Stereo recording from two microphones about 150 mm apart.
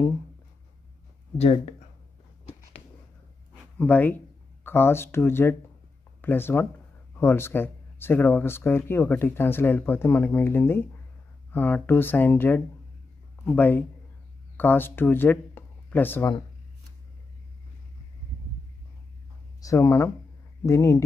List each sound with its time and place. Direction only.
1.4 s speech: 45° left (ahead or behind)
3.7 s speech: 10° left (ahead or behind)
19.6 s speech: 20° left (ahead or behind)